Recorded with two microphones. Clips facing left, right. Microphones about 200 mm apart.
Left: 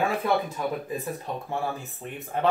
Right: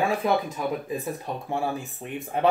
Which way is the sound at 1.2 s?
15° right (ahead or behind).